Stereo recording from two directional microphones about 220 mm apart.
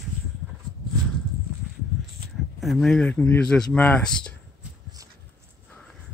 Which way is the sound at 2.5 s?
Centre (ahead or behind).